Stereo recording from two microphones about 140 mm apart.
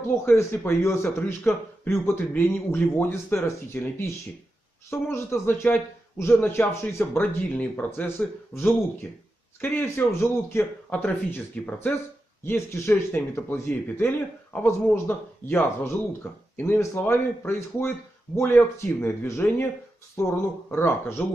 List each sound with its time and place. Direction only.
0.2 s a man's voice: 15° left (ahead or behind)